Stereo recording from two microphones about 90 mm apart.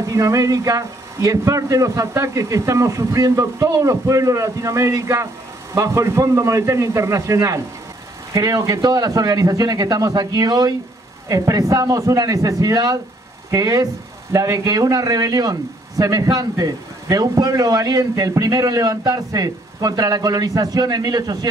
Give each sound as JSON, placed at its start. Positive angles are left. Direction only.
{"t": 0.0, "sound": "a man's voice", "side_deg": -35}